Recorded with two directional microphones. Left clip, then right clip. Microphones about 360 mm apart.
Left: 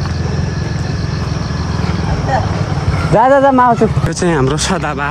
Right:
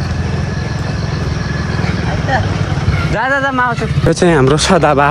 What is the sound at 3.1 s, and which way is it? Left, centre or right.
Speech, centre.